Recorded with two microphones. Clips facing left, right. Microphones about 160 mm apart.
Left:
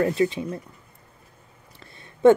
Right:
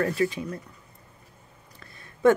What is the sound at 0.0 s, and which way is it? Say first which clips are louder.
Speech: left 3 dB; 20° left (ahead or behind).